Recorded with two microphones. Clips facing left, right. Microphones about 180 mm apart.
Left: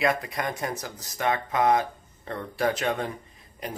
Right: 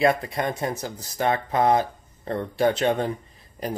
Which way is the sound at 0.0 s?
30° right (ahead or behind).